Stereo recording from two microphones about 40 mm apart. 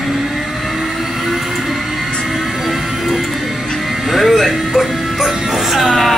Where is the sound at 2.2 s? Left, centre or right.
Centre.